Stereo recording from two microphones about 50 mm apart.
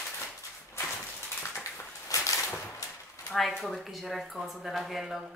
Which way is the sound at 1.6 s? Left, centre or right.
Left.